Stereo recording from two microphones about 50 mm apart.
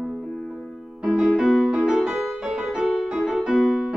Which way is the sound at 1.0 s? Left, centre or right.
Centre.